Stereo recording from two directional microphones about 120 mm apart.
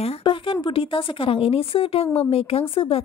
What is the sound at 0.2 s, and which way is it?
A woman's voice, 45° left (ahead or behind).